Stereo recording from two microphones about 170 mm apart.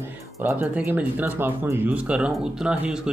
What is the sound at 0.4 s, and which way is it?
Speech, 10° right (ahead or behind).